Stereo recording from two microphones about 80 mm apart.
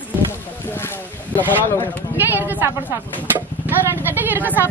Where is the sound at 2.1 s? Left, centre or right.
Right.